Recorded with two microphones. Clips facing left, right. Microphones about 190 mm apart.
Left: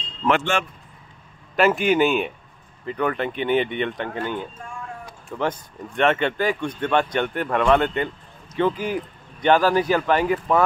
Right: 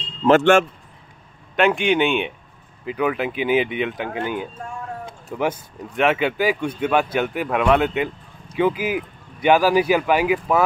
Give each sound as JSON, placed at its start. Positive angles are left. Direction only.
{"t": 0.2, "sound": "vehicle", "side_deg": -20}
{"t": 1.6, "sound": "speech", "side_deg": 0}